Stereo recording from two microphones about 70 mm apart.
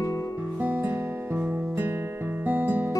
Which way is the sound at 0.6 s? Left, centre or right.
Right.